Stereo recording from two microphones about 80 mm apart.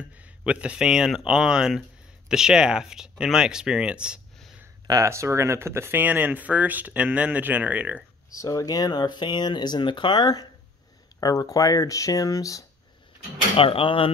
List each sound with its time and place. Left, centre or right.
0.2 s speech: centre
4.8 s speech: right; by 8.0 s centre
8.3 s speech: left
11.1 s speech: left